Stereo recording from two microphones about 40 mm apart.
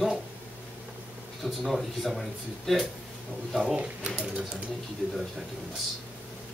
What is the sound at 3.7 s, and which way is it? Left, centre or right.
Speech, right.